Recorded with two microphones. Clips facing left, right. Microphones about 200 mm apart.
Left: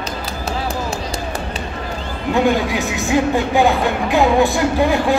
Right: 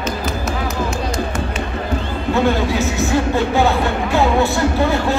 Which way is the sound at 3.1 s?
15° left (ahead or behind).